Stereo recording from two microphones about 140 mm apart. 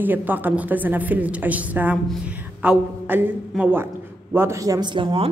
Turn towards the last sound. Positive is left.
turn(degrees=-35)  # may be behind; listen again after turning